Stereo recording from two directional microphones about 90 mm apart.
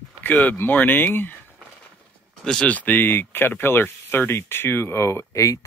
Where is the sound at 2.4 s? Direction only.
10° left (ahead or behind).